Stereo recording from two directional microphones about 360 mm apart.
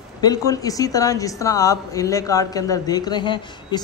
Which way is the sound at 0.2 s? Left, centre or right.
Centre.